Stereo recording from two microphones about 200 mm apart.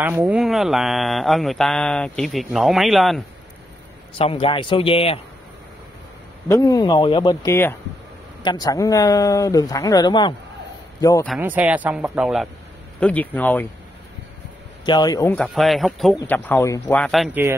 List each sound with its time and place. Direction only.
0.0 s speech: 5° right (ahead or behind)
4.1 s speech: 30° left (ahead or behind)
6.5 s a man's voice: 15° left (ahead or behind)
11.2 s speech: 5° right (ahead or behind)
13.0 s speech: 5° left (ahead or behind)
14.9 s speech: 20° left (ahead or behind); by 16.2 s centre (ahead or behind)
16.2 s speech: 10° left (ahead or behind)
17.0 s speech: centre (ahead or behind)